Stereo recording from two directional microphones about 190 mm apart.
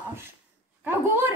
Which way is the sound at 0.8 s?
10° right (ahead or behind).